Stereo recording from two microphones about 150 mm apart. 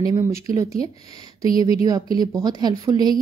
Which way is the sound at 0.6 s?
20° right (ahead or behind).